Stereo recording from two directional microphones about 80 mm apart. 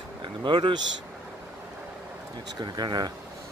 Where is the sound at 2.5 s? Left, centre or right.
Right.